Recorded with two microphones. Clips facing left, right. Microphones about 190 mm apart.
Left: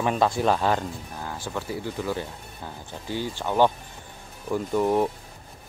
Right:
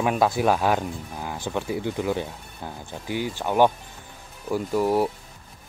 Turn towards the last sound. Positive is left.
turn(degrees=-5)  # may be behind; listen again after turning